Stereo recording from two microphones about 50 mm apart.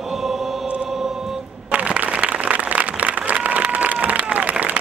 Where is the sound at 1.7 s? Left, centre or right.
Right.